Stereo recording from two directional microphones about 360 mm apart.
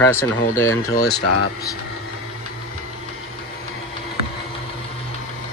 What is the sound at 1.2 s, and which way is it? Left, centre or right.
Speech, left.